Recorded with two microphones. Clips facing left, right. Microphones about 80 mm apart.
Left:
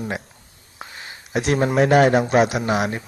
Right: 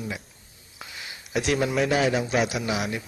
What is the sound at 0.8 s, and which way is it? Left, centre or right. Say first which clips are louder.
A man's voice: left 3 dB; left.